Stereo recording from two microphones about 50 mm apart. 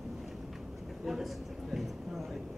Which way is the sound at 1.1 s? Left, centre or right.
Centre.